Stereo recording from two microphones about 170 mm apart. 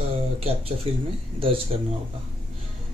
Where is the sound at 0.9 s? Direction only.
35° right (ahead or behind).